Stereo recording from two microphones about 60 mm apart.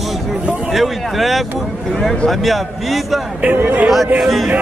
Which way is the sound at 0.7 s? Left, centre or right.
Centre.